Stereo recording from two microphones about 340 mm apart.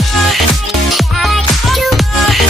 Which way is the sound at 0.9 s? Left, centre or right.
Centre.